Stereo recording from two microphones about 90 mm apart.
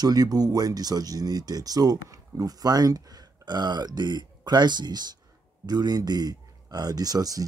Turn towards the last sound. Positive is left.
turn(degrees=-45)  # may be behind; listen again after turning